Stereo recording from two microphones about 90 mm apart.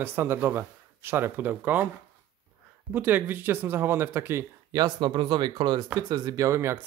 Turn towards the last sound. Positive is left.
turn(degrees=-30)  # may be behind; listen again after turning